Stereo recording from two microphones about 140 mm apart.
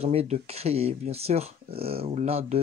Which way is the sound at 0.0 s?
45° right (ahead or behind).